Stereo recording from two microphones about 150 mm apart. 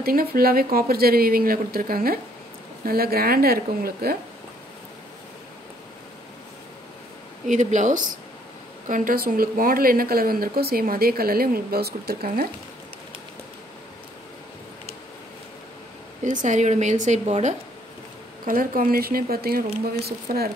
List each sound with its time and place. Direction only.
0.0 s speech: 85° right
2.8 s a woman's voice: 90° right
7.4 s speech: 55° right (ahead or behind); by 12.4 s 90° right
16.4 s a woman's voice: 55° right (ahead or behind)
18.5 s speech: 70° right (ahead or behind); by 20.5 s 90° right